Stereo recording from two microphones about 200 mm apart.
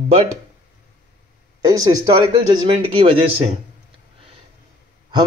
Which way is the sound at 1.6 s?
15° right (ahead or behind).